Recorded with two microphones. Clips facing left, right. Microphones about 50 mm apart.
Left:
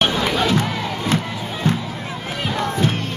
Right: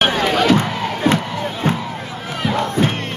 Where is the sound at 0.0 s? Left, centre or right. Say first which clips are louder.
Right 2 dB; right.